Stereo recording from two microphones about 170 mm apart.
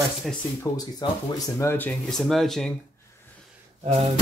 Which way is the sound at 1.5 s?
10° left (ahead or behind).